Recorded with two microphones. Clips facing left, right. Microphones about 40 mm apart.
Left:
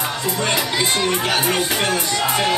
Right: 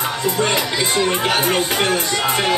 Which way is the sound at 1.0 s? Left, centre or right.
Right.